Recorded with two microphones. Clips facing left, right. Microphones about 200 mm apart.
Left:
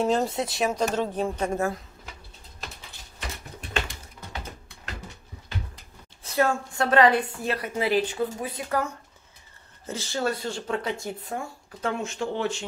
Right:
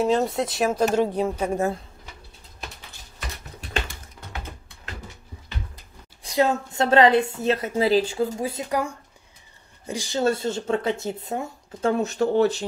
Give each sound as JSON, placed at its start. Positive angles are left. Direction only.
{"t": 0.0, "sound": "a woman's voice", "side_deg": 0}
{"t": 6.2, "sound": "speech", "side_deg": -15}
{"t": 8.6, "sound": "a woman's voice", "side_deg": -15}
{"t": 11.9, "sound": "speech", "side_deg": -40}